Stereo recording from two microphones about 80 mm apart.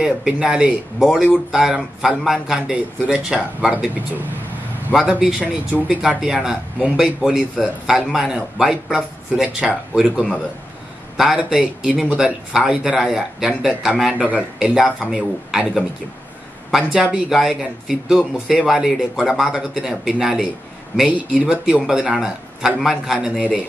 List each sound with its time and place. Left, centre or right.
0.0 s a man's voice: centre
4.9 s a man's voice: centre
6.0 s a man's voice: centre
14.3 s a man's voice: centre
16.7 s speech: centre